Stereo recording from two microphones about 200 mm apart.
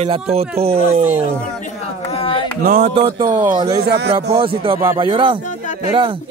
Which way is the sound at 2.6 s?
40° right (ahead or behind).